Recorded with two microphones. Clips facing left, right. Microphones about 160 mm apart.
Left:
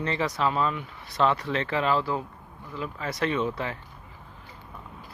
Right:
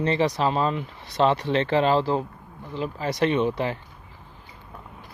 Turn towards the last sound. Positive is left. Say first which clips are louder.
# right 5 dB
turn(degrees=-25)  # may be behind; listen again after turning